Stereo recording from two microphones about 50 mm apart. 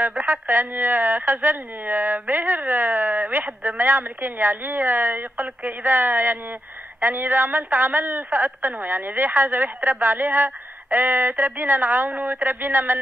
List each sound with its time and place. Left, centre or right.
0.0 s speech: right